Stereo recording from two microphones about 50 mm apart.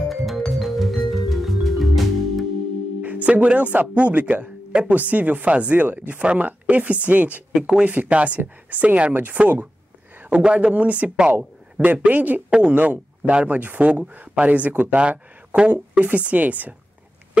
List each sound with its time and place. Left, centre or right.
0.1 s music: centre
3.0 s speech: right
7.5 s speech: centre
7.8 s speech: right
10.3 s speech: right
12.4 s speech: centre
12.7 s speech: right